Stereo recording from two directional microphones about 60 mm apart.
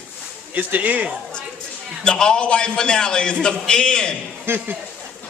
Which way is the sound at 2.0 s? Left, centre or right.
Centre.